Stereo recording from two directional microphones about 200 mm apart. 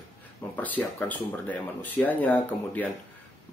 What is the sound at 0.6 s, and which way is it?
Speech, 10° left (ahead or behind).